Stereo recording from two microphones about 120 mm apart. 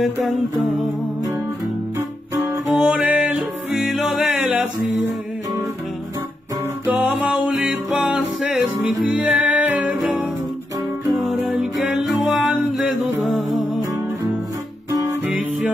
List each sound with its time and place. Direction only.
0.0 s humming: centre (ahead or behind)
2.0 s guitar: 20° right (ahead or behind)
2.8 s music: 10° right (ahead or behind)
6.9 s music: 15° right (ahead or behind)
11.1 s music: centre (ahead or behind)
13.2 s humming: centre (ahead or behind)